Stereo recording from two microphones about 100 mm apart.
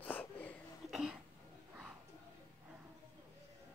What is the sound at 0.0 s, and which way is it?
Wheeze, 15° left (ahead or behind).